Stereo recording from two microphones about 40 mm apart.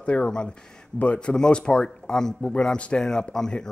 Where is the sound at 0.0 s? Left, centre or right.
Left.